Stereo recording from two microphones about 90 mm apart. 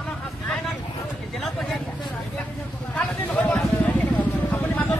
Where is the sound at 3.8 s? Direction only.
20° left (ahead or behind).